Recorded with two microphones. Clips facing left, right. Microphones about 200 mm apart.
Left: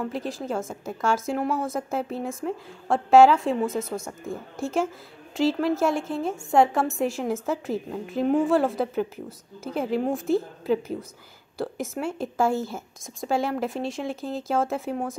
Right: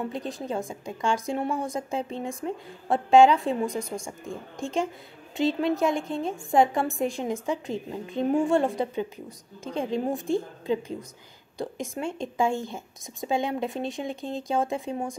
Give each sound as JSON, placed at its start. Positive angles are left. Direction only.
{"t": 0.1, "sound": "a woman's voice", "side_deg": 5}
{"t": 0.5, "sound": "speech", "side_deg": -15}
{"t": 0.8, "sound": "a woman's voice", "side_deg": 5}
{"t": 3.9, "sound": "speech", "side_deg": -15}
{"t": 4.6, "sound": "a woman's voice", "side_deg": 5}
{"t": 11.5, "sound": "a woman's voice", "side_deg": 5}